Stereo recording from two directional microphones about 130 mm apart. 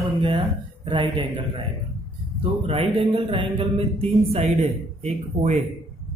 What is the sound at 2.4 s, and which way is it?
A man's voice, 45° right (ahead or behind).